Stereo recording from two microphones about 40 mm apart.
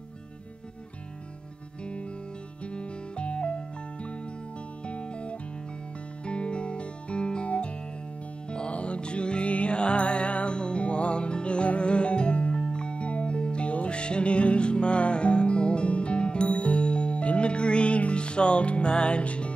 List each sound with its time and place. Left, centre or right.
1.9 s music: left